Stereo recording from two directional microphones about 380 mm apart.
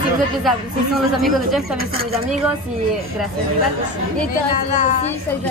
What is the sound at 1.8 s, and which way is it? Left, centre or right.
Speech, right.